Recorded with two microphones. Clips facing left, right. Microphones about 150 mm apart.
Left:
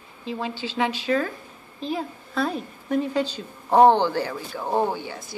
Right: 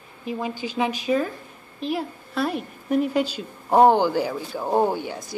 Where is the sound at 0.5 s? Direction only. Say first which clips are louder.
Right 1 dB; 90° left.